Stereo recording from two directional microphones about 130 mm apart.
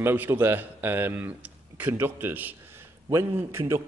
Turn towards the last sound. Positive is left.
turn(degrees=-20)  # may be behind; listen again after turning